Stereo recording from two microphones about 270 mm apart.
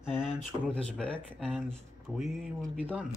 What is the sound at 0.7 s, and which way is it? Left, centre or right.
Speech, centre.